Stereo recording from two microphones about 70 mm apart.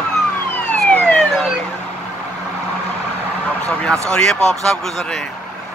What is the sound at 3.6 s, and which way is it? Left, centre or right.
Speech, centre.